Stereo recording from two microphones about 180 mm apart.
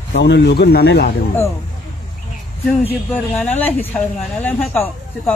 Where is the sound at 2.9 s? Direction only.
10° left (ahead or behind).